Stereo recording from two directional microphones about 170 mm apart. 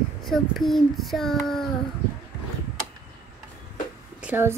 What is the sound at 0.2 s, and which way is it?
Speech, centre (ahead or behind).